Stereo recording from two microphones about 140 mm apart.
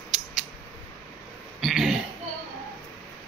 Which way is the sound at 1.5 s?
Centre (ahead or behind).